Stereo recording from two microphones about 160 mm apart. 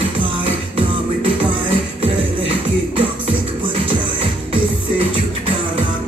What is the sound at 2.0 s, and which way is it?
Music, 35° right (ahead or behind).